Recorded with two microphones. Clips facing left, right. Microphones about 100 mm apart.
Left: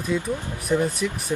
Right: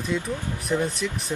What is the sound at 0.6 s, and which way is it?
Speech, centre (ahead or behind).